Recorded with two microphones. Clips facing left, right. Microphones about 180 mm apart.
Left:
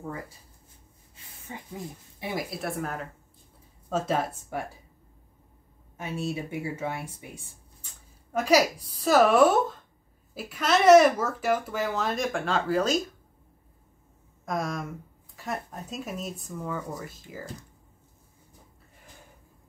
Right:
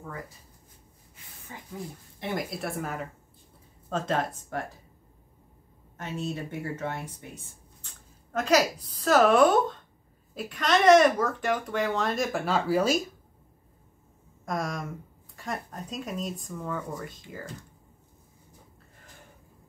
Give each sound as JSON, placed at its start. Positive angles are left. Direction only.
{"t": 1.1, "sound": "a sound", "side_deg": 20}
{"t": 2.1, "sound": "speech", "side_deg": 5}
{"t": 5.9, "sound": "speech", "side_deg": 10}
{"t": 14.4, "sound": "speech", "side_deg": 0}